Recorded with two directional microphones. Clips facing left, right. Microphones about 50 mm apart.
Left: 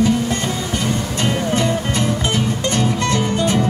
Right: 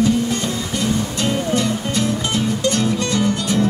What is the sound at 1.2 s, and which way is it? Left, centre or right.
Music, left.